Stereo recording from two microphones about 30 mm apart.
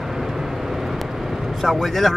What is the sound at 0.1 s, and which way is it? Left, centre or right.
Vehicle, centre.